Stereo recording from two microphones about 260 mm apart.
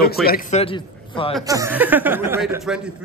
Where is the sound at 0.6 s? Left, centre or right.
Left.